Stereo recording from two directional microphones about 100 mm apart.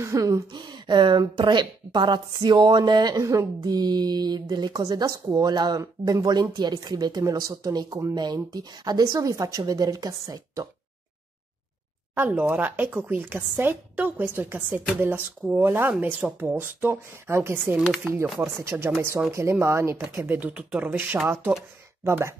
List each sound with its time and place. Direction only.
0.0 s a sound: 30° right (ahead or behind)
0.5 s a woman's voice: 50° right (ahead or behind)
12.2 s speech: 20° right (ahead or behind)
20.3 s speech: 15° right (ahead or behind)